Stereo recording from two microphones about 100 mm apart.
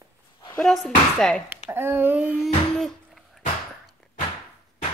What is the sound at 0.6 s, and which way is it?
Speech, 5° left (ahead or behind).